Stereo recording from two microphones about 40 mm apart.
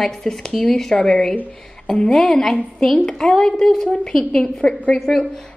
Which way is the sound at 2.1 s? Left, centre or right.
Centre.